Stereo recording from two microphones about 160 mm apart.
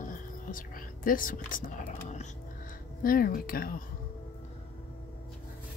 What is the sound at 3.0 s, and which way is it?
Speech, 65° left (ahead or behind).